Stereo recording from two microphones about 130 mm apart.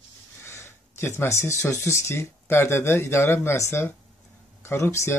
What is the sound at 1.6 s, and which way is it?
Speech, 25° left (ahead or behind).